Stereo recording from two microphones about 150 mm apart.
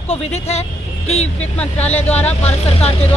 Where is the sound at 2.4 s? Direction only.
45° left (ahead or behind).